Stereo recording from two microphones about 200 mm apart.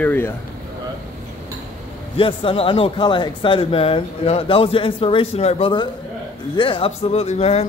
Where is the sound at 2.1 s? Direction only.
25° left (ahead or behind).